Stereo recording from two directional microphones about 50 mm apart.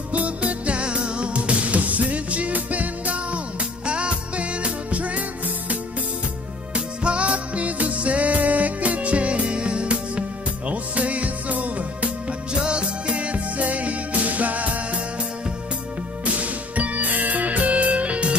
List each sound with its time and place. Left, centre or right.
0.1 s music: right
6.7 s music: right
16.3 s music: right